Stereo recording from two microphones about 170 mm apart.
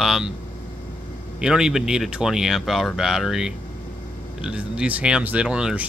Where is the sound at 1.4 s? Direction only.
5° right (ahead or behind).